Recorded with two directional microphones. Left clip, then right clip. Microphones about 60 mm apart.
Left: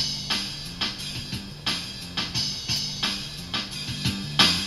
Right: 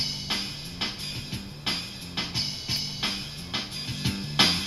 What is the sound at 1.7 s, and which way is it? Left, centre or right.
Music, right.